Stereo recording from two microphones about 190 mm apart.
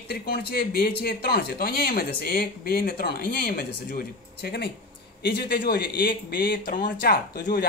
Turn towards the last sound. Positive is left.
turn(degrees=55)  # may be behind; listen again after turning